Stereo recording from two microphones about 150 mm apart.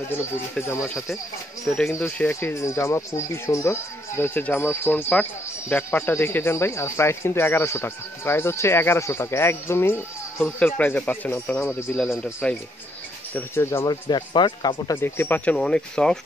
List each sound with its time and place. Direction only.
0.6 s speech: 15° left (ahead or behind)
0.8 s speech: centre (ahead or behind)
2.0 s speech: 15° left (ahead or behind)
13.8 s speech: 30° left (ahead or behind)
15.0 s speech: 15° left (ahead or behind)